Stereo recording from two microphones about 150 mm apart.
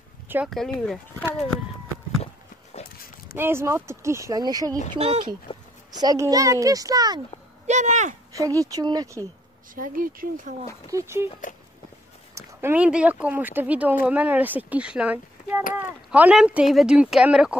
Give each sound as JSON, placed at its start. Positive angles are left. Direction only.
{"t": 0.3, "sound": "speech", "side_deg": -15}
{"t": 3.3, "sound": "speech", "side_deg": -15}
{"t": 4.9, "sound": "speech", "side_deg": -45}
{"t": 5.5, "sound": "a sound", "side_deg": 40}
{"t": 5.9, "sound": "speech", "side_deg": -25}
{"t": 7.6, "sound": "speech", "side_deg": -50}
{"t": 8.3, "sound": "speech", "side_deg": -20}
{"t": 9.8, "sound": "speech", "side_deg": -70}
{"t": 10.9, "sound": "speech", "side_deg": -20}
{"t": 12.4, "sound": "speech", "side_deg": -10}